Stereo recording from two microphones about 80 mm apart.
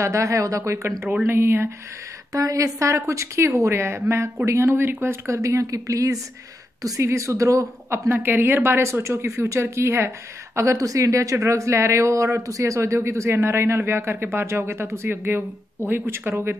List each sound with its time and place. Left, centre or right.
0.0 s a man's voice: right
2.3 s a man's voice: right
8.1 s a man's voice: right